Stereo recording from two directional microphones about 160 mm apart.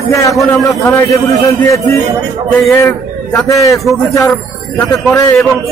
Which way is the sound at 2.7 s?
20° left (ahead or behind).